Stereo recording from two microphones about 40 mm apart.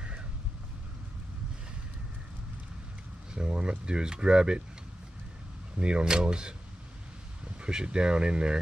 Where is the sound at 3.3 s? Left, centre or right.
Right.